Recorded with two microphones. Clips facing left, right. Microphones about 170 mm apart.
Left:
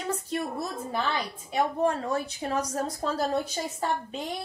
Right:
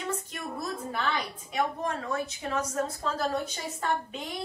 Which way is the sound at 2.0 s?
35° left (ahead or behind).